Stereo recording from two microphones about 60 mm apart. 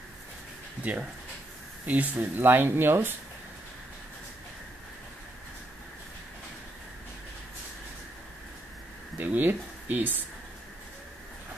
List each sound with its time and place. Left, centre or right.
0.9 s speech: right
9.2 s speech: right